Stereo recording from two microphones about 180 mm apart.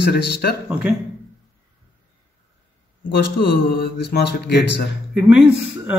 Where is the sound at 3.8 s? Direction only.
70° left (ahead or behind).